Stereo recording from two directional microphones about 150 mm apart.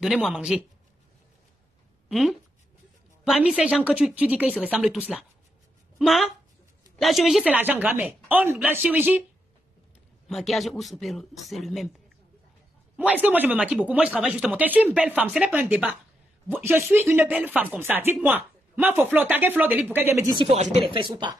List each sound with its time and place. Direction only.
0.0 s speech: centre (ahead or behind)
2.0 s speech: centre (ahead or behind)
10.2 s speech: centre (ahead or behind)
12.9 s a man's voice: 10° right (ahead or behind)
20.3 s speech: 45° right (ahead or behind)